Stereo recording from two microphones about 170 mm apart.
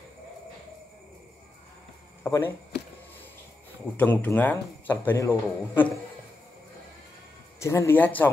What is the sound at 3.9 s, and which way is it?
Speech, 10° left (ahead or behind).